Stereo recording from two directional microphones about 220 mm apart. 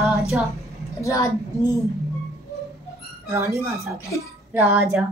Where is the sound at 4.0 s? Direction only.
15° left (ahead or behind).